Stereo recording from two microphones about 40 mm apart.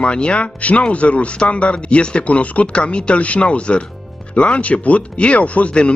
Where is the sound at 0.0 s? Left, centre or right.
Left.